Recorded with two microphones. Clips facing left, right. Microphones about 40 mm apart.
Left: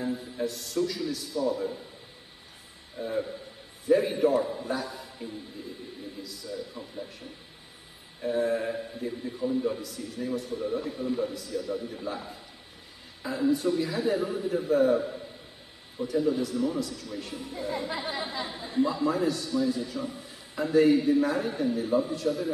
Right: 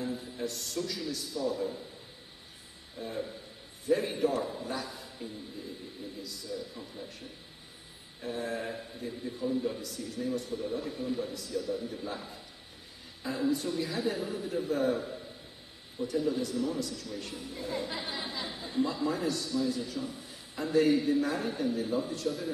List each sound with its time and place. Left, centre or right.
0.0 s a man's voice: centre
3.0 s a man's voice: centre
9.8 s a man's voice: centre
17.6 s speech: left
18.6 s a man's voice: centre
19.2 s a man's voice: centre
20.1 s a sound: centre
20.9 s a man's voice: centre